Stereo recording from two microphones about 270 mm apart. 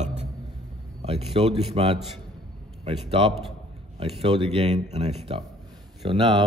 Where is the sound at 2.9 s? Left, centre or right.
Centre.